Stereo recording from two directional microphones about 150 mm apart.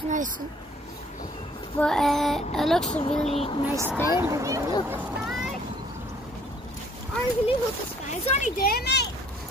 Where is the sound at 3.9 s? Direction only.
15° left (ahead or behind).